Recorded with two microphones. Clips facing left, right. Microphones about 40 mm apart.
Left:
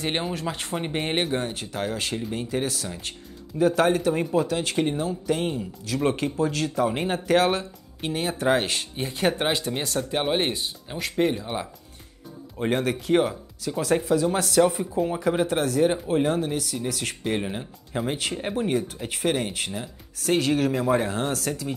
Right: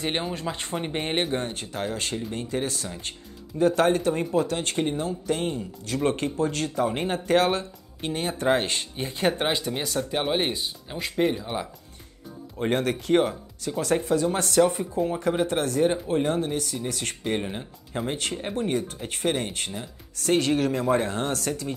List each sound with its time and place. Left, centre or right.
0.0 s speech: centre